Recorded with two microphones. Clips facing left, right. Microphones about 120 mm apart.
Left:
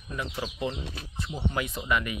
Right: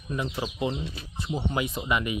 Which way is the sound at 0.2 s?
20° right (ahead or behind).